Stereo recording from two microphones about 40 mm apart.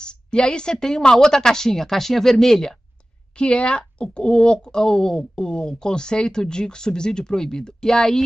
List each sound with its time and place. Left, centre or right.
0.0 s a woman's voice: left
3.3 s speech: left; by 8.2 s centre